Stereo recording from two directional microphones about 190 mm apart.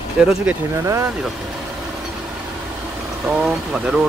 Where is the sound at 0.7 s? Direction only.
15° right (ahead or behind).